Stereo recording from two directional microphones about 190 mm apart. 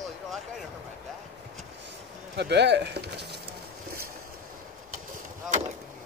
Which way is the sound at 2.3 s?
60° right (ahead or behind).